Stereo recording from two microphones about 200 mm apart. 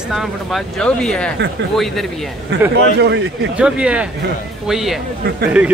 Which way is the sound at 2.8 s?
60° right (ahead or behind).